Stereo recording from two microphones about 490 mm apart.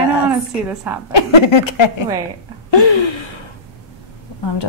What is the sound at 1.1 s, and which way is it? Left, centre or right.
Speech, left.